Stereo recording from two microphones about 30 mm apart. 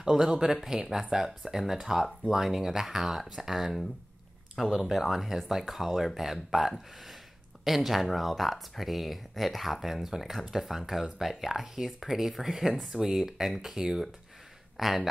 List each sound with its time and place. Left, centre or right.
0.1 s speech: centre
0.7 s speech: right; by 3.8 s centre
4.8 s speech: centre
5.1 s speech: centre
10.0 s speech: centre
14.8 s speech: centre